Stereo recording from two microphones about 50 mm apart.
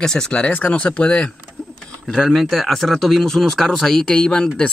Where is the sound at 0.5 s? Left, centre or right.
Left.